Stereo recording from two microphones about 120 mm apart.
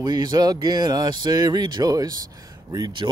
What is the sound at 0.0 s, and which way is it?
Speech, 35° right (ahead or behind).